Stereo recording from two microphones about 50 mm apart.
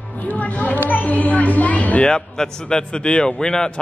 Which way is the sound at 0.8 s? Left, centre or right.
Left.